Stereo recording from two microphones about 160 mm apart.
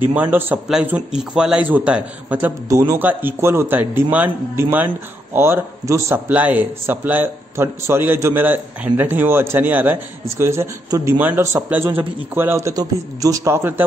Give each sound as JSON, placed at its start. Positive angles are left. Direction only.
{"t": 0.0, "sound": "a man's voice", "side_deg": -10}